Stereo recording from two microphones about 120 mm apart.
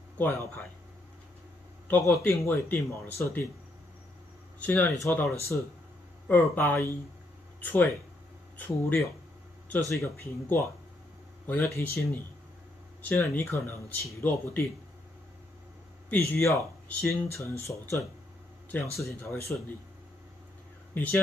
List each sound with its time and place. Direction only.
0.2 s speech: 20° left (ahead or behind)
1.9 s speech: 20° left (ahead or behind)
4.6 s speech: 15° left (ahead or behind)
13.1 s speech: 20° left (ahead or behind)
16.1 s speech: 20° left (ahead or behind)
20.9 s speech: 15° left (ahead or behind)